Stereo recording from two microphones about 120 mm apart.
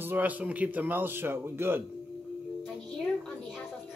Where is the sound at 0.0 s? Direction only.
15° right (ahead or behind).